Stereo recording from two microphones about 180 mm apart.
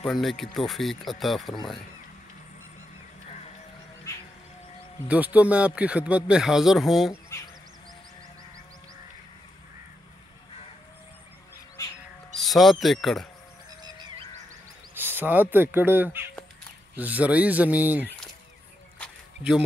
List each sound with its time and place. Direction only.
0.0 s speech: centre (ahead or behind)
5.0 s speech: 10° right (ahead or behind)
7.1 s speech: 15° left (ahead or behind)
11.8 s crow: 20° left (ahead or behind)
12.4 s speech: centre (ahead or behind)
15.0 s a sound: 10° right (ahead or behind)
15.5 s speech: 10° right (ahead or behind)
18.9 s a sound: 5° right (ahead or behind)